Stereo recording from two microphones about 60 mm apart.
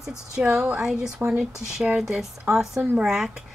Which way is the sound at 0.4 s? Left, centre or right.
Centre.